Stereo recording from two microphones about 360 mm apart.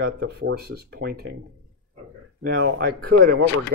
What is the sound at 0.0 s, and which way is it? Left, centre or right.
Speech, right.